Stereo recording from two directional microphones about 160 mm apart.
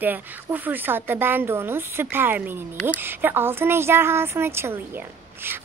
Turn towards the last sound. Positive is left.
turn(degrees=-15)  # may be behind; listen again after turning